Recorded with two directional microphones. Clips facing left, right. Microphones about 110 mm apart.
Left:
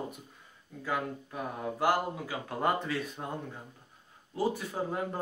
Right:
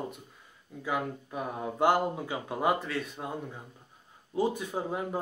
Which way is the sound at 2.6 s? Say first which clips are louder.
Right 1 dB; centre (ahead or behind).